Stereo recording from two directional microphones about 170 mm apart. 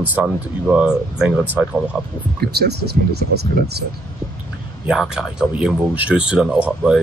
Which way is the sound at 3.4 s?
70° right (ahead or behind).